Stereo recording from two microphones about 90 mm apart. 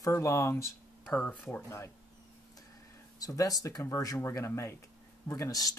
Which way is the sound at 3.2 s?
40° left (ahead or behind).